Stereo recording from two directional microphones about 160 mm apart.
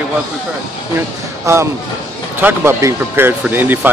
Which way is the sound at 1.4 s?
20° right (ahead or behind).